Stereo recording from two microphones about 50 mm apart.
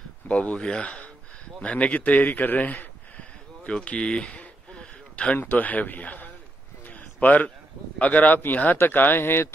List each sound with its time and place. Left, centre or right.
0.3 s speech: left
3.2 s a sound: left
5.4 s speech: left
6.9 s a sound: left
8.0 s speech: left
8.7 s speech: left